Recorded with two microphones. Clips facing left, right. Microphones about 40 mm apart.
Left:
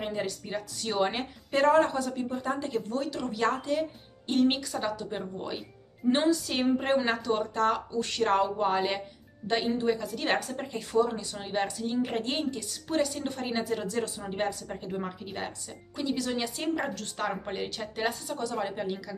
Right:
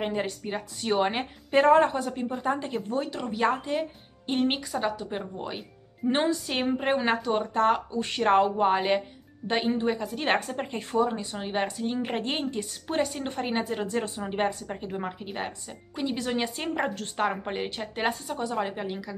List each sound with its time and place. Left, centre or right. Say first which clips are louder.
0.0 s a woman's voice: right 3 dB; right